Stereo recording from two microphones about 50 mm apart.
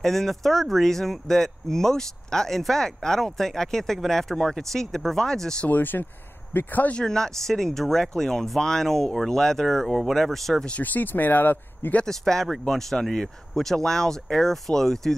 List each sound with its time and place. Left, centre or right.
0.0 s speech: centre
5.7 s speech: left
7.0 s speech: centre
10.8 s speech: left
12.1 s speech: centre